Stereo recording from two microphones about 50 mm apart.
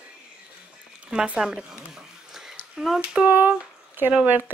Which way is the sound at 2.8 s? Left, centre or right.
Centre.